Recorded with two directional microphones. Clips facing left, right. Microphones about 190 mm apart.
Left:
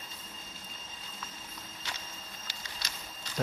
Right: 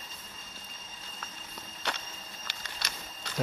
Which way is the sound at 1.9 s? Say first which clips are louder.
Right 8 dB; 65° right (ahead or behind).